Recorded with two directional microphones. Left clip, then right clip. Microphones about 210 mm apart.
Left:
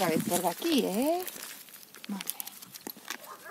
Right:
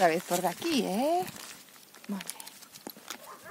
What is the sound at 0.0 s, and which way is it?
Speech, 45° right (ahead or behind).